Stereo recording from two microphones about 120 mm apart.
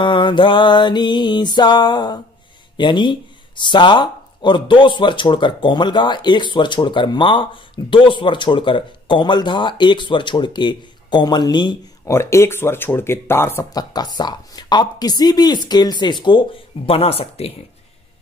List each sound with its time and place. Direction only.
0.0 s speech: 40° left (ahead or behind)
12.1 s speech: 20° left (ahead or behind)
13.7 s speech: 35° left (ahead or behind); by 17.6 s 55° left (ahead or behind)